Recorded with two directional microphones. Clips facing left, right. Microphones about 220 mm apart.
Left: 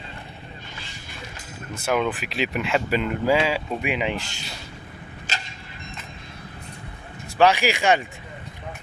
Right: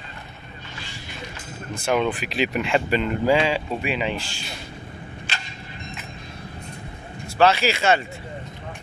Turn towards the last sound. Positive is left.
turn(degrees=15)  # may be behind; listen again after turning